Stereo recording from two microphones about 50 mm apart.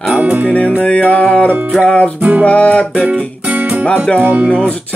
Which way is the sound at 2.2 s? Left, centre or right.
Right.